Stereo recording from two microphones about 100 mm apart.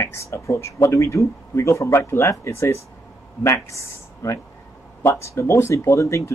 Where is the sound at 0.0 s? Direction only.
30° left (ahead or behind).